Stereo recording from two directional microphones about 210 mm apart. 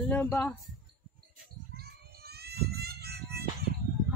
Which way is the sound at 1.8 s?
50° right (ahead or behind).